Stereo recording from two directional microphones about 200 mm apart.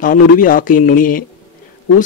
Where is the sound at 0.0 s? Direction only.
40° left (ahead or behind).